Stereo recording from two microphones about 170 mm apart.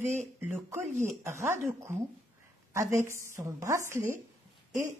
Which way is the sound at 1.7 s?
15° right (ahead or behind).